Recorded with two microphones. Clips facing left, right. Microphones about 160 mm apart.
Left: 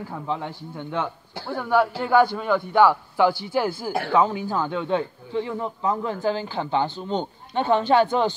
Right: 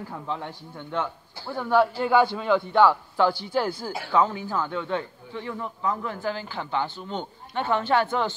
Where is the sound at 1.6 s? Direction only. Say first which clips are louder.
Even; 5° left (ahead or behind).